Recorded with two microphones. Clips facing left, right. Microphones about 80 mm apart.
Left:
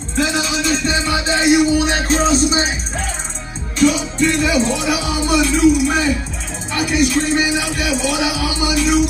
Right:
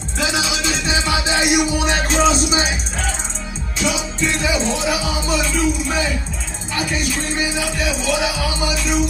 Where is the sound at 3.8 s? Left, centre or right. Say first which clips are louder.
Left 7 dB; left.